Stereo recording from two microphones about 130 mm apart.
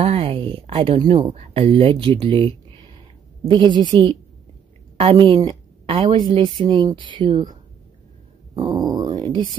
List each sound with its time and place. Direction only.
0.0 s speech: 50° right (ahead or behind)
4.9 s a sound: 45° right (ahead or behind)
5.3 s a woman's voice: 45° right (ahead or behind)
8.5 s wail: 30° right (ahead or behind)